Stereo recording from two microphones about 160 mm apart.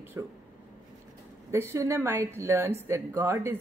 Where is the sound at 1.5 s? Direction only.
15° right (ahead or behind).